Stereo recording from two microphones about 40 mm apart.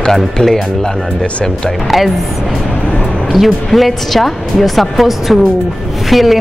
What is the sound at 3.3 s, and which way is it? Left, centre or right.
Speech, centre.